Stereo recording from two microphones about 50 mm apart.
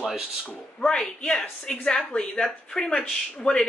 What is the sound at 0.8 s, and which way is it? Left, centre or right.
Speech, centre.